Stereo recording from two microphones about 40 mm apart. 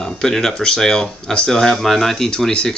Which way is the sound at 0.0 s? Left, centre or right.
Centre.